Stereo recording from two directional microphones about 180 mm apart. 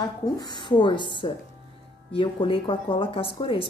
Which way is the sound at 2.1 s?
30° left (ahead or behind).